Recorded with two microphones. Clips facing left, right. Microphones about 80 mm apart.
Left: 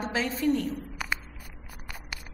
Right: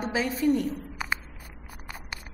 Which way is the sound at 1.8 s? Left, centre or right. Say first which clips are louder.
Right 1 dB; right.